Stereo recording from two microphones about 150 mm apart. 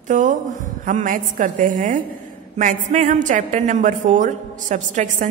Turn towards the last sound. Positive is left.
turn(degrees=-60)  # may be behind; listen again after turning